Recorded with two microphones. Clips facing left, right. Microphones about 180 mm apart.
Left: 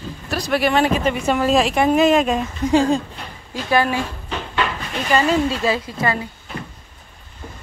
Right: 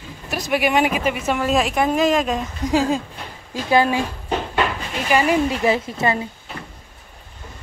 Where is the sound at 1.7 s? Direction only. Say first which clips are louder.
Left 4 dB; 25° left (ahead or behind).